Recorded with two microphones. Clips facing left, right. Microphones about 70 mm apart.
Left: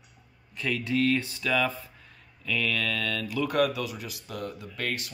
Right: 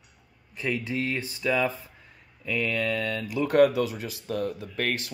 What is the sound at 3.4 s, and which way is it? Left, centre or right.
Speech, right.